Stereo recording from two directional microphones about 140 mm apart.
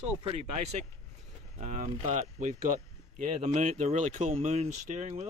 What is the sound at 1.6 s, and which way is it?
Speech, 65° right (ahead or behind).